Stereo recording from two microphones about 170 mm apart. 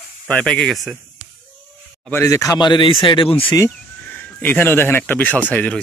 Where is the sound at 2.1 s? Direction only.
15° left (ahead or behind); by 3.6 s 30° left (ahead or behind).